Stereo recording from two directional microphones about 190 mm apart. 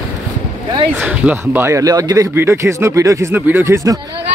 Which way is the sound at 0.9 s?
5° right (ahead or behind).